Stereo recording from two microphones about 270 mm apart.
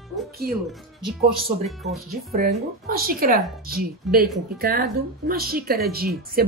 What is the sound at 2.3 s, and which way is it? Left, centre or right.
A woman's voice, right.